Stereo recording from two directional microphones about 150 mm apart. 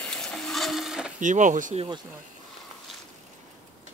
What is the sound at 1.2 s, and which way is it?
Speech, 55° right (ahead or behind).